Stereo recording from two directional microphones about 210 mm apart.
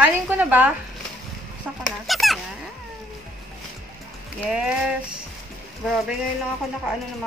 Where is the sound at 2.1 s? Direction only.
Centre (ahead or behind).